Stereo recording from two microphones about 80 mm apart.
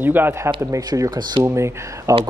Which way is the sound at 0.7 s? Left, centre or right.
Right.